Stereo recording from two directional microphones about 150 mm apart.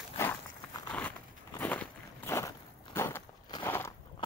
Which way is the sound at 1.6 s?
10° left (ahead or behind).